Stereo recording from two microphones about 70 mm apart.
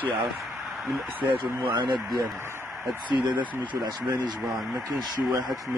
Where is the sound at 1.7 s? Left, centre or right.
Right.